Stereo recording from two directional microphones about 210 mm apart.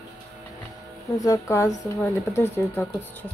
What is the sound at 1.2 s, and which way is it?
Speech, 15° left (ahead or behind).